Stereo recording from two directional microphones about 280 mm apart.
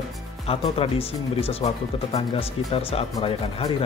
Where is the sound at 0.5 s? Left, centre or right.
Left.